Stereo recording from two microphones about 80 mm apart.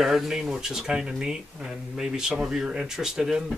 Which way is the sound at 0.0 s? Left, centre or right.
Centre.